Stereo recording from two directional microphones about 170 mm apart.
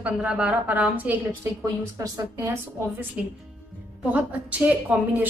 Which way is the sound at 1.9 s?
20° right (ahead or behind).